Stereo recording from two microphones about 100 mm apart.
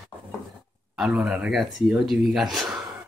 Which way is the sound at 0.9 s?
5° right (ahead or behind).